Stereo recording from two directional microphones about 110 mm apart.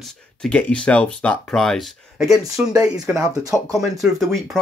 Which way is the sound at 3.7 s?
30° right (ahead or behind).